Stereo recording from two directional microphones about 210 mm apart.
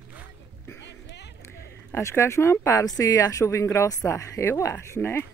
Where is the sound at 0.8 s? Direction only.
55° left (ahead or behind).